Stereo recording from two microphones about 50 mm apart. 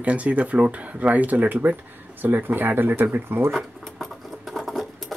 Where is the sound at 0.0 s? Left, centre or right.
Right.